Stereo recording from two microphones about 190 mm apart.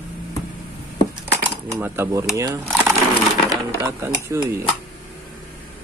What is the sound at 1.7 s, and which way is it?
Speech, 15° right (ahead or behind).